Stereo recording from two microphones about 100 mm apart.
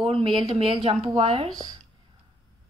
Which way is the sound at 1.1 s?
85° right.